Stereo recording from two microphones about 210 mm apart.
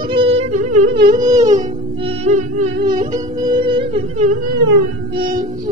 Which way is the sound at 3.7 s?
25° right (ahead or behind).